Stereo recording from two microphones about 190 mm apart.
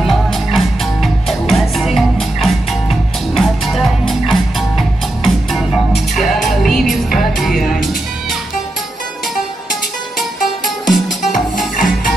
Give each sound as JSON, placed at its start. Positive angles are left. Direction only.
{"t": 0.0, "sound": "music", "side_deg": 0}
{"t": 10.4, "sound": "music", "side_deg": 0}
{"t": 11.5, "sound": "music", "side_deg": 45}